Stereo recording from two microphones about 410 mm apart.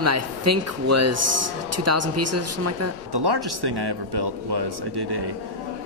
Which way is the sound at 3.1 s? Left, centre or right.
Right.